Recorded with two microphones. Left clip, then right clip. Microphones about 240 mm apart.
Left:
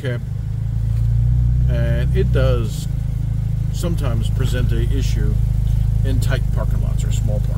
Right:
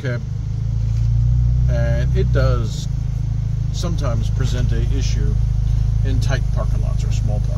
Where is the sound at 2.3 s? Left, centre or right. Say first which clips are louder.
Left 1 dB; centre.